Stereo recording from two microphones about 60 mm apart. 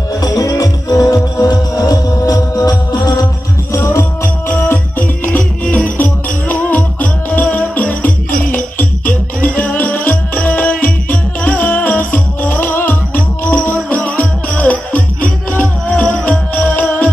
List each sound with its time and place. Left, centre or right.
0.2 s music: left
4.9 s music: left
13.6 s music: left